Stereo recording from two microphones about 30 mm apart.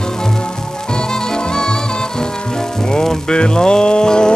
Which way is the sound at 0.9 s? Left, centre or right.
Left.